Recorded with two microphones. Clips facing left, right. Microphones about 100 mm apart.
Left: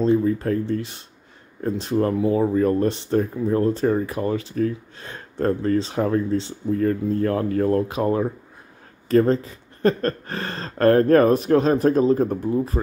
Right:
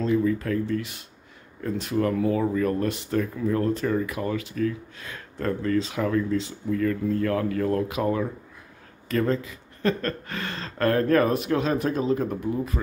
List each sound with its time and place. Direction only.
0.0 s speech: 30° left (ahead or behind)